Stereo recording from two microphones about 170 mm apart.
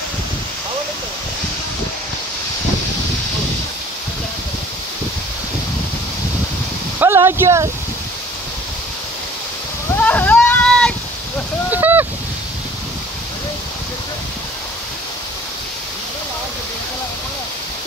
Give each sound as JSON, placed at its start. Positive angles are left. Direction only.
{"t": 7.0, "sound": "speech", "side_deg": -15}
{"t": 9.9, "sound": "a sound", "side_deg": 10}
{"t": 11.7, "sound": "boat", "side_deg": -10}